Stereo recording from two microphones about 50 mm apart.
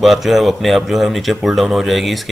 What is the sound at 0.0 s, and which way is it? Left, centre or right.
Speech, centre.